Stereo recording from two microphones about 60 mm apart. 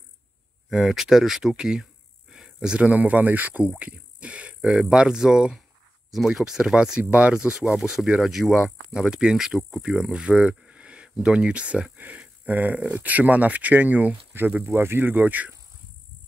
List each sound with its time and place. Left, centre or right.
0.7 s speech: centre
2.8 s speech: right
3.7 s music: centre
4.6 s speech: centre
7.0 s speech: right
7.7 s speech: centre; by 14.5 s right
14.6 s speech: right